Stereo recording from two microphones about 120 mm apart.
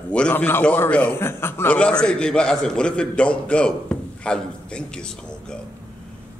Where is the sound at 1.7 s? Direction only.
10° left (ahead or behind).